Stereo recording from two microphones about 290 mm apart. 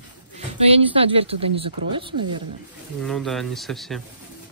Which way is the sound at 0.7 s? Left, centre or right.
Centre.